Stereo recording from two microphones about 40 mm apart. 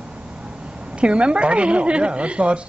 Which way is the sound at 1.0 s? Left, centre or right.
Right.